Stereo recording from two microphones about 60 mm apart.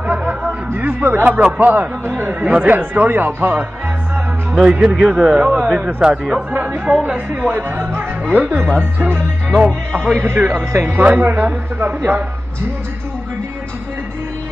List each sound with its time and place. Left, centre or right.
0.3 s a sound: right
1.4 s speech: right
4.6 s speech: centre
6.5 s chatter: right
6.9 s a woman's voice: centre